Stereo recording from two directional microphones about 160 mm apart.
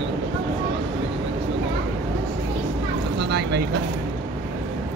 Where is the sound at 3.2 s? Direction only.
90° right.